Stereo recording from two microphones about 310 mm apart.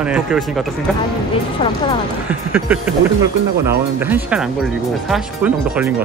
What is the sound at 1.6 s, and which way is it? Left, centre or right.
Speech, centre.